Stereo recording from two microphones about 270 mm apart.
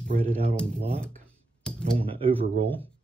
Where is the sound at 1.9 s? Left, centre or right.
Right.